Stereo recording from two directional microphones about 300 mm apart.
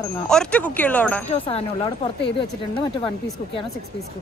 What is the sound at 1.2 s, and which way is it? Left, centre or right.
Speech, centre.